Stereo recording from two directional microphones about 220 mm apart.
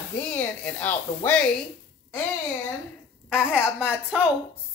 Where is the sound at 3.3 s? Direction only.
5° right (ahead or behind).